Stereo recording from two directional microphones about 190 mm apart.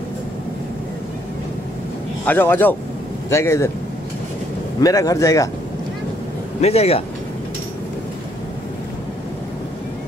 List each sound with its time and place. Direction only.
2.2 s a man's voice: 10° left (ahead or behind)
4.7 s a man's voice: 20° left (ahead or behind)
6.6 s speech: 35° left (ahead or behind)